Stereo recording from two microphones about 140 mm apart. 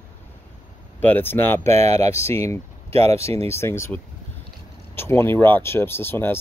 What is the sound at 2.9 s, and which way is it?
Speech, 45° right (ahead or behind).